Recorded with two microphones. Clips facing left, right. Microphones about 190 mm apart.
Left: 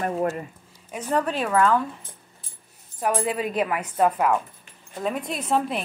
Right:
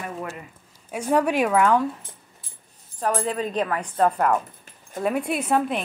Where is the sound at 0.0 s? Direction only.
40° left (ahead or behind).